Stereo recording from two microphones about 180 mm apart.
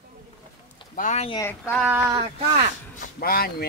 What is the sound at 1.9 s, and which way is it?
Speech, 15° right (ahead or behind).